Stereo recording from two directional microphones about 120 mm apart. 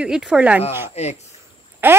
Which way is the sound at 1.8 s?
15° right (ahead or behind).